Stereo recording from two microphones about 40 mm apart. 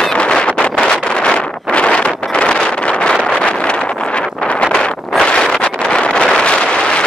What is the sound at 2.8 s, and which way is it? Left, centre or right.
Vehicle, left.